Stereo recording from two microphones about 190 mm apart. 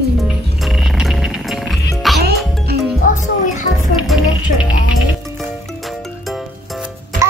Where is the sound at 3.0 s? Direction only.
40° left (ahead or behind).